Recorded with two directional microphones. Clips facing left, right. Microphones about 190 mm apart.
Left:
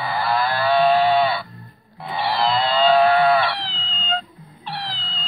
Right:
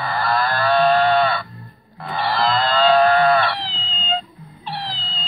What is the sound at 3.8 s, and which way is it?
Cat, 25° right (ahead or behind).